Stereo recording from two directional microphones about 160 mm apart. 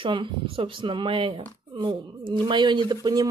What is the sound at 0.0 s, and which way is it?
Speech, 30° right (ahead or behind).